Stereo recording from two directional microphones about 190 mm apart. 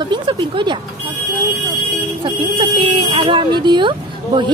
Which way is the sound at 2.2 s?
25° right (ahead or behind).